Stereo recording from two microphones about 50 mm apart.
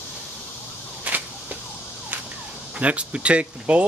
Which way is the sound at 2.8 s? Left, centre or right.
Right.